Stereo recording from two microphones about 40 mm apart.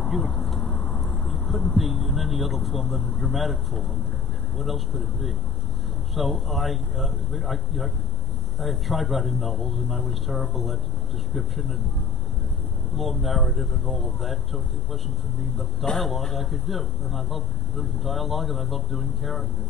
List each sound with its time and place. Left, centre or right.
0.0 s speech: centre
0.5 s a sound: centre
1.8 s speech: centre
13.2 s speech: centre
15.8 s a man's voice: centre